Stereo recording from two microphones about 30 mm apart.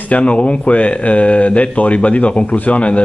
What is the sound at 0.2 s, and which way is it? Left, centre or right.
Speech, left.